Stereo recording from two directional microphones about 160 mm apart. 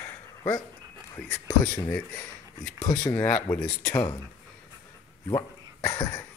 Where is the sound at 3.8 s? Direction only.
30° left (ahead or behind).